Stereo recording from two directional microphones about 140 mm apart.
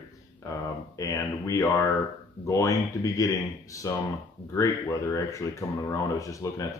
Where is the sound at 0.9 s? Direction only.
25° left (ahead or behind).